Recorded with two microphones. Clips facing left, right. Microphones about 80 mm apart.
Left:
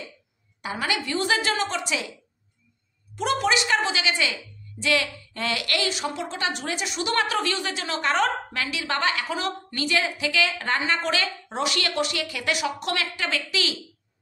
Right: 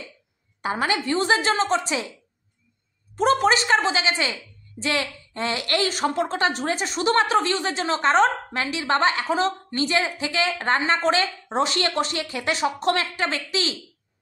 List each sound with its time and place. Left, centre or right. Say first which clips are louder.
0.6 s a woman's voice: right 4 dB; right
3.2 s a woman's voice: right 4 dB; right